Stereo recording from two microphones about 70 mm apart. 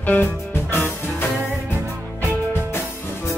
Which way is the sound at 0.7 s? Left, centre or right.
Left.